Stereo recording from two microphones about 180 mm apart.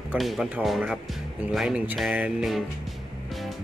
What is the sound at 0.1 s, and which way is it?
Speech, centre (ahead or behind).